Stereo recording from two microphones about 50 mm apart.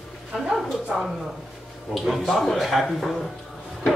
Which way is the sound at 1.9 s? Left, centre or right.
Centre.